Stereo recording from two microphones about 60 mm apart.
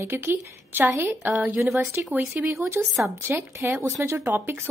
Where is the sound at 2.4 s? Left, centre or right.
Right.